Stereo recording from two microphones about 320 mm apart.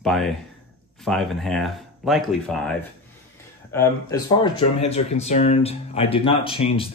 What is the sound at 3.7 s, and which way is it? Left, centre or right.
Speech, centre.